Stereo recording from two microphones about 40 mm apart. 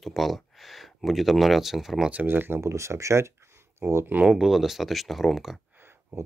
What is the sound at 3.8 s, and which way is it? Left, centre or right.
Speech, right.